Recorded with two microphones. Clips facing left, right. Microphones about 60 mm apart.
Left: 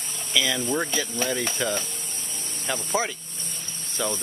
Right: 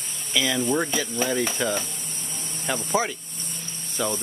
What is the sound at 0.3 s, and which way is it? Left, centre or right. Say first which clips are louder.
Speech: right 2 dB; centre.